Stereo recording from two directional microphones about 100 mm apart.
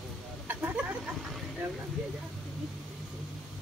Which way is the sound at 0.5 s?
20° right (ahead or behind).